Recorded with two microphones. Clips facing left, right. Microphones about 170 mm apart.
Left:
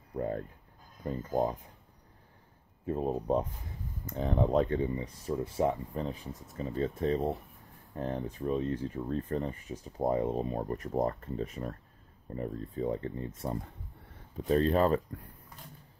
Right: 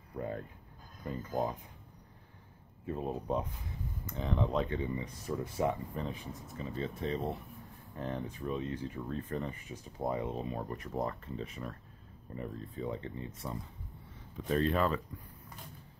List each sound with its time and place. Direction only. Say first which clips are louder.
0.1 s speech: left 5 dB; 20° left (ahead or behind)
1.0 s speech: left 4 dB; 35° left (ahead or behind)
2.9 s speech: left 5 dB; 40° left (ahead or behind)
14.3 s speech: left 4 dB; 35° left (ahead or behind)